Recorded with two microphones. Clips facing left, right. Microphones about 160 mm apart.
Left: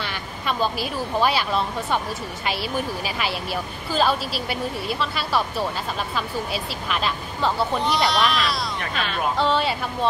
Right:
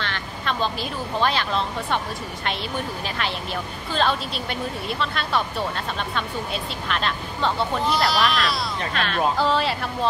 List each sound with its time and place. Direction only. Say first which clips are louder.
0.0 s speech: even; 10° left (ahead or behind)
3.9 s speech: left 2 dB; 5° left (ahead or behind)